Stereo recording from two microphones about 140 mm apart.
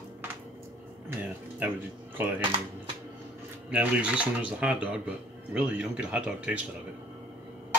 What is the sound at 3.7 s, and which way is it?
Speech, 10° right (ahead or behind).